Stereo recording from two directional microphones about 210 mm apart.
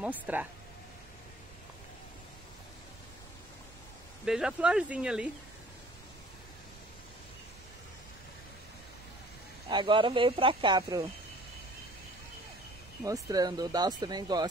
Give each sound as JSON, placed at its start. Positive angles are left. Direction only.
{"t": 0.0, "sound": "speech", "side_deg": -10}
{"t": 4.3, "sound": "speech", "side_deg": -5}
{"t": 9.7, "sound": "speech", "side_deg": -20}
{"t": 13.0, "sound": "speech", "side_deg": -15}